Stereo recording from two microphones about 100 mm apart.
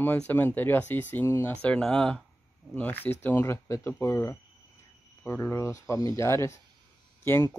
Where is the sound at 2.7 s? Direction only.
20° left (ahead or behind).